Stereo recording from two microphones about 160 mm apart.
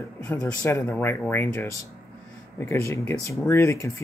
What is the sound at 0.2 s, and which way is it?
Speech, 5° left (ahead or behind).